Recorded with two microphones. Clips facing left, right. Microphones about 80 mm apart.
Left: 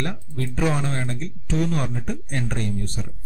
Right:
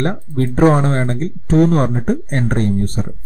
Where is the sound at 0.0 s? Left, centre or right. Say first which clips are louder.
Right 10 dB; right.